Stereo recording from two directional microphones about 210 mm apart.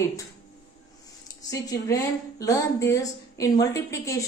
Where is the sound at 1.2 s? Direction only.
15° left (ahead or behind).